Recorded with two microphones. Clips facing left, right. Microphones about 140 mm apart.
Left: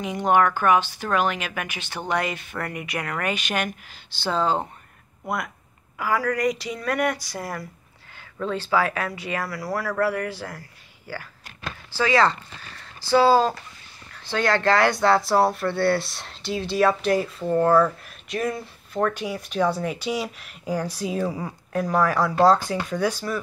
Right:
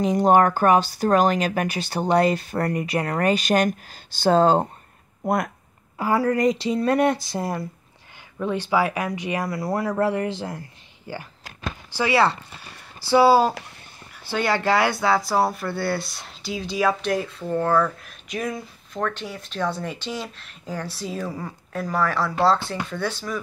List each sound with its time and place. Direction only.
0.0 s speech: 40° right (ahead or behind)
5.9 s speech: 30° right (ahead or behind)
11.6 s speech: 10° right (ahead or behind); by 23.4 s 10° left (ahead or behind)